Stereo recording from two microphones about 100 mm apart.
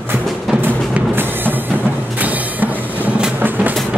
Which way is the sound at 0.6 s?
20° right (ahead or behind).